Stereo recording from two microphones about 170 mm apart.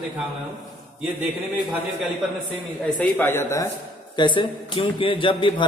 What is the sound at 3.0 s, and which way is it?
Speech, 15° left (ahead or behind).